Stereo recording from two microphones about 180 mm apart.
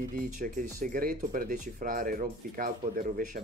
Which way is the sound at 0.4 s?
50° right (ahead or behind).